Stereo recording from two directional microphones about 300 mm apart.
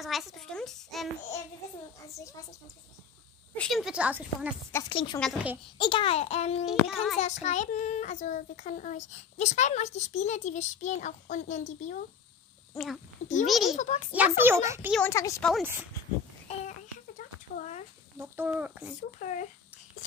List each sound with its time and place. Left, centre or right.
0.0 s a child's voice: centre
3.5 s a child's voice: centre
4.7 s a woman's voice: centre
5.2 s a child's voice: centre
5.8 s speech: centre
6.6 s a child's voice: centre
7.4 s speech: left
12.7 s a child's voice: centre
13.7 s speech: left
14.1 s a child's voice: centre
17.2 s a sound: left
18.1 s speech: centre
18.9 s speech: left